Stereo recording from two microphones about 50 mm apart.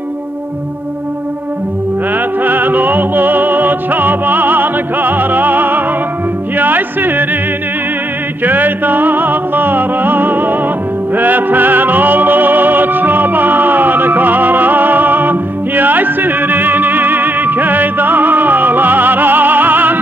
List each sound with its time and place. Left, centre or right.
2.1 s music: right
8.5 s music: right